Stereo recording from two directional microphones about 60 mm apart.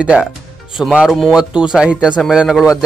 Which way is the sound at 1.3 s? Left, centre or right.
Centre.